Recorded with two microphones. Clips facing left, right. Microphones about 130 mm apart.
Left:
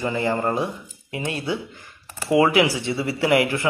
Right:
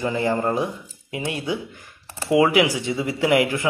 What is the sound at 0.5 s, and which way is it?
Speech, 15° right (ahead or behind).